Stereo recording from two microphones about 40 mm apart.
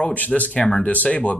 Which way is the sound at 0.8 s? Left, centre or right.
Left.